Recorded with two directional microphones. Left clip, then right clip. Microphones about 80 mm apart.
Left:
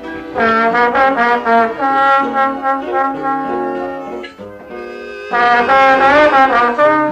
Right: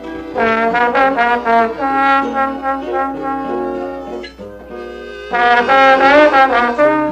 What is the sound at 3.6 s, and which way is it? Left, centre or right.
Music, right.